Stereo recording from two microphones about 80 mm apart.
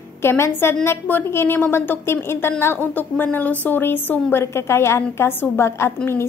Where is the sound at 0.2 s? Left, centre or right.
Left.